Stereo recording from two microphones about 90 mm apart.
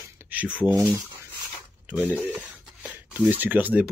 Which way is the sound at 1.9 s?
20° right (ahead or behind).